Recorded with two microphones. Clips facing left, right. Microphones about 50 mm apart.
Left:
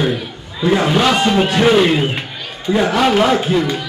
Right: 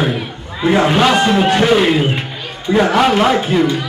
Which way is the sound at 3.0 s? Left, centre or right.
Centre.